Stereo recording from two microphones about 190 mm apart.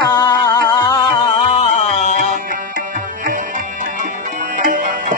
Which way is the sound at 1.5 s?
35° left (ahead or behind).